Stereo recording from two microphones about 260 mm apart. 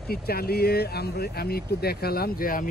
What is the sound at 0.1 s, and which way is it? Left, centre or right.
Speech, left.